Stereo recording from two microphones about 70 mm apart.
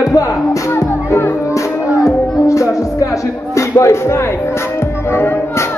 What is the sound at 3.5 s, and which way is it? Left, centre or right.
Speech, left.